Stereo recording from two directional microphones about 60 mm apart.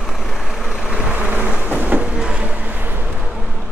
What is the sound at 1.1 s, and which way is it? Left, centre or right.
Vehicle, right.